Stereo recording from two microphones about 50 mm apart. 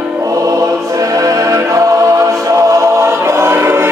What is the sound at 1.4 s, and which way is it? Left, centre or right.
Choir, right.